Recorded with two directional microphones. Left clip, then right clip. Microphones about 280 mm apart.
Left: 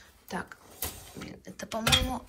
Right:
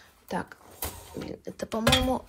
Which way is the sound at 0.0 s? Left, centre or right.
Right.